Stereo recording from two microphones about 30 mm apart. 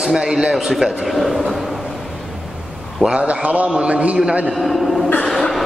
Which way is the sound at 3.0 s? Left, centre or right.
Right.